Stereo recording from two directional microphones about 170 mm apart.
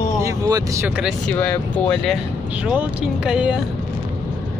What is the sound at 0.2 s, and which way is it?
Speech, 20° right (ahead or behind).